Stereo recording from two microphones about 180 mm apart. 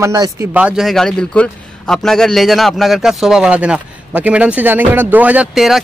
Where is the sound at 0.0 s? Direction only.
15° right (ahead or behind).